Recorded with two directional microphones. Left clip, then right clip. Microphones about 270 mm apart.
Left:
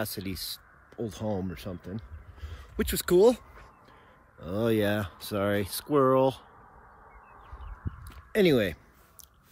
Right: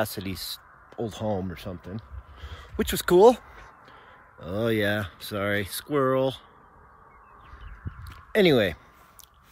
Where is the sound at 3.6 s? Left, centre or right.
Right.